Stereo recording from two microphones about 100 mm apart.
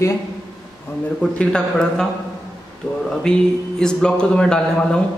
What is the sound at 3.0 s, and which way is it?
Speech, 5° left (ahead or behind).